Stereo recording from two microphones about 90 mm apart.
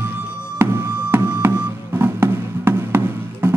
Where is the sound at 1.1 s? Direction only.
25° right (ahead or behind).